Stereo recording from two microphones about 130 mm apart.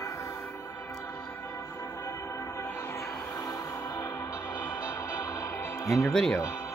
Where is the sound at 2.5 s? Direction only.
25° left (ahead or behind).